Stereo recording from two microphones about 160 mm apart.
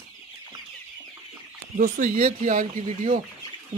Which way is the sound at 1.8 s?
65° right (ahead or behind).